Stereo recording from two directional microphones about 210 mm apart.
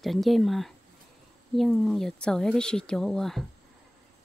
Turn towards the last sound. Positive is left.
turn(degrees=0)  # may be behind; listen again after turning